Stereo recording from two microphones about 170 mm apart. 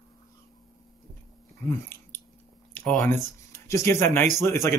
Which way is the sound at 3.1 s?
15° left (ahead or behind).